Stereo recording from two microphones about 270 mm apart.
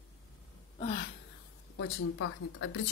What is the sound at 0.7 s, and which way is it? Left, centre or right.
Gasp, left.